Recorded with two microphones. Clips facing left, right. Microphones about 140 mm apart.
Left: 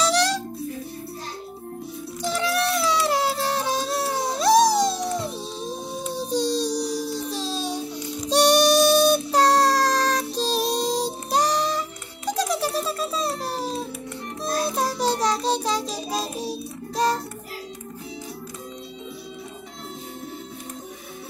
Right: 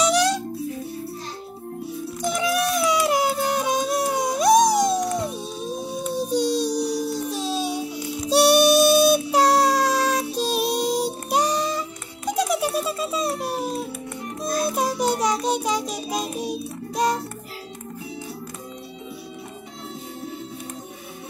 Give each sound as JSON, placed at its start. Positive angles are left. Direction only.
{"t": 0.0, "sound": "music", "side_deg": -10}
{"t": 2.2, "sound": "music", "side_deg": -10}
{"t": 6.3, "sound": "child singing", "side_deg": -10}
{"t": 12.3, "sound": "music", "side_deg": -10}